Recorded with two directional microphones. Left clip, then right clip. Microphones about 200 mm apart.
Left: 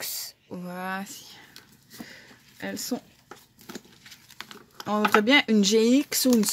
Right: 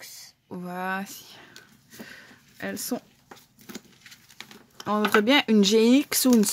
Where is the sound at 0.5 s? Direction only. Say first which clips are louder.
Right 4 dB; 15° right (ahead or behind).